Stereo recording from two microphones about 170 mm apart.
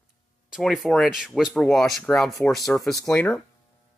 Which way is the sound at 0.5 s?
Centre (ahead or behind).